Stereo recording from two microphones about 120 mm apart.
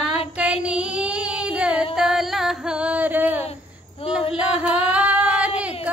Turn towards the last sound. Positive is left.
turn(degrees=-10)  # may be behind; listen again after turning